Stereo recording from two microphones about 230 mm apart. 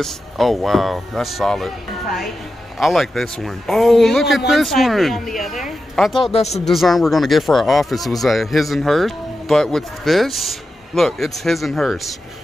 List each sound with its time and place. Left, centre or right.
0.0 s speech: centre
6.3 s speech: left
6.6 s speech: centre